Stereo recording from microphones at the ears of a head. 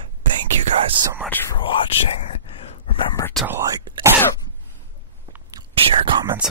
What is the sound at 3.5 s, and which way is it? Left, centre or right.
Whispering, right.